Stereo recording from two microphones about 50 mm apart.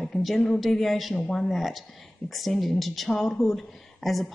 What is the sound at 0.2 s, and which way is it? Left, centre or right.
Speech, centre.